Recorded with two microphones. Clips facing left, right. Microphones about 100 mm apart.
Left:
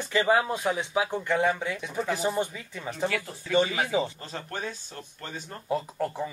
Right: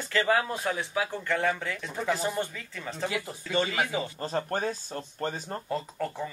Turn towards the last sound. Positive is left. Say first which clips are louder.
# left 2 dB
turn(degrees=10)  # may be behind; listen again after turning